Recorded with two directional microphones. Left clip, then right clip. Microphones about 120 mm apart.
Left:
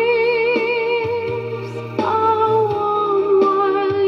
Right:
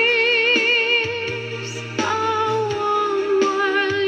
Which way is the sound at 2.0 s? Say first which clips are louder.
Left 4 dB; 40° left (ahead or behind).